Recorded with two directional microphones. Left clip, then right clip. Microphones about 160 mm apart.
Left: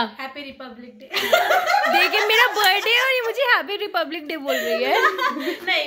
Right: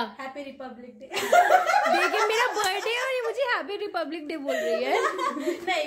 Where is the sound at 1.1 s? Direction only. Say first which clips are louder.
Left 4 dB; 35° right (ahead or behind).